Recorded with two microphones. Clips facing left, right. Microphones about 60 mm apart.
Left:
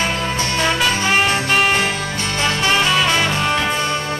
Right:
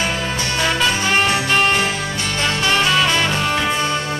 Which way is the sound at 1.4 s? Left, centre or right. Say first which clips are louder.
Even; centre.